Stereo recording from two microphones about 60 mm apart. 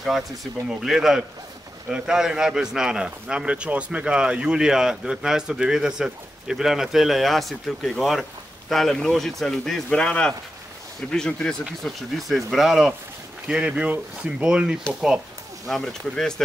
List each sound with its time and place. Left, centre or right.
0.8 s speech: centre
11.8 s speech: centre
13.5 s speech: centre
15.6 s speech: centre